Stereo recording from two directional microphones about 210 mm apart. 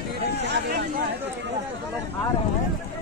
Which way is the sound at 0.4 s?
55° right (ahead or behind).